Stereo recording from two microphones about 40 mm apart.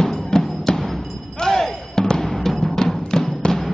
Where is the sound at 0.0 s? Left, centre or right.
Centre.